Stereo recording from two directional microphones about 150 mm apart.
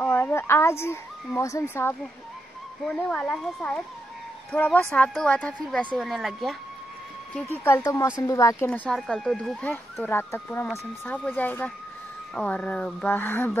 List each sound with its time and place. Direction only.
0.0 s speech: 15° left (ahead or behind)
2.8 s speech: 5° left (ahead or behind)
7.8 s speech: 20° left (ahead or behind)
8.6 s speech: 5° left (ahead or behind)
10.0 s speech: 15° left (ahead or behind)